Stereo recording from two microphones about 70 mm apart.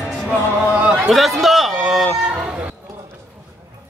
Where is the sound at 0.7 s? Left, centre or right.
Centre.